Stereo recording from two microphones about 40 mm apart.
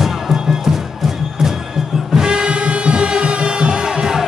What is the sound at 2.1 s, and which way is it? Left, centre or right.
Music, right.